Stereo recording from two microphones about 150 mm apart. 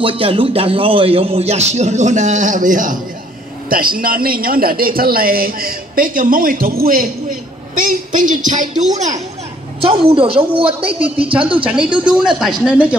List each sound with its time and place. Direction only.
0.0 s a man's voice: 35° right (ahead or behind); by 3.0 s 60° right (ahead or behind)
3.6 s a woman's voice: 75° right (ahead or behind)
9.8 s a woman's voice: 40° right (ahead or behind)
11.6 s a man's voice: 5° right (ahead or behind)